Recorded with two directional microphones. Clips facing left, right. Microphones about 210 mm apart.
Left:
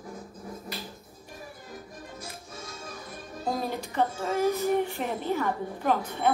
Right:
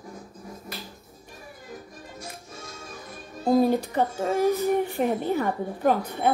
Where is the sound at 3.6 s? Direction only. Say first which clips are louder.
Right 5 dB; 45° right (ahead or behind).